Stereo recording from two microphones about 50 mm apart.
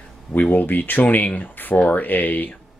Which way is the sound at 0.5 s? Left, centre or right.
Left.